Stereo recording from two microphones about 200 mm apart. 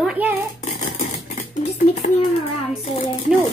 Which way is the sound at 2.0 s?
35° left (ahead or behind).